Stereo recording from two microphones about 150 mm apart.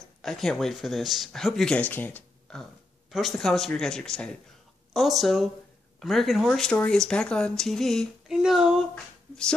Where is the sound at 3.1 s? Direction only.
Centre (ahead or behind).